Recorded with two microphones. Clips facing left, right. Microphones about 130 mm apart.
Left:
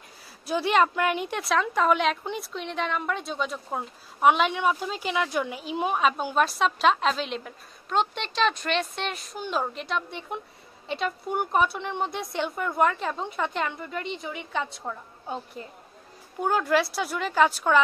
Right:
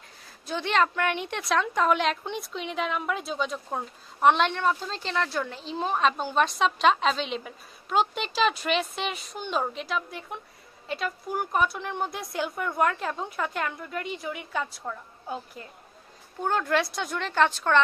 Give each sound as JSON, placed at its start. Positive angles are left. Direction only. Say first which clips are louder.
{"t": 0.5, "sound": "a woman's voice", "louder": "left 3 dB", "side_deg": 10}
{"t": 15.6, "sound": "a woman's voice", "louder": "left 4 dB", "side_deg": 25}
{"t": 16.3, "sound": "a woman's voice", "louder": "left 2 dB", "side_deg": 5}